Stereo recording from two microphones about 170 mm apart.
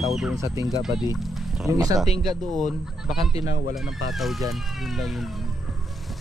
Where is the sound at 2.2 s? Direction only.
Centre (ahead or behind).